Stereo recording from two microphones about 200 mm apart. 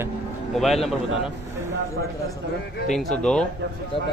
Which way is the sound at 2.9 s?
5° left (ahead or behind).